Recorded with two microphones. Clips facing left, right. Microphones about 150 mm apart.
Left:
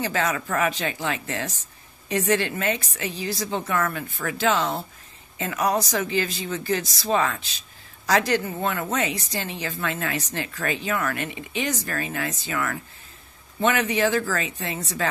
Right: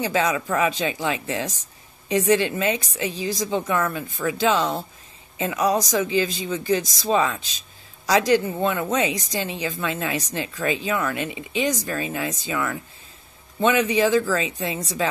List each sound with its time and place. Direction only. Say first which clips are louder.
0.0 s a woman's voice: right 3 dB; 20° right (ahead or behind)